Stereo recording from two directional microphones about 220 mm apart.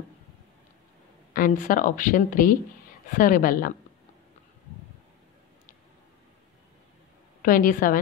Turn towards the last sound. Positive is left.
turn(degrees=40)  # may be behind; listen again after turning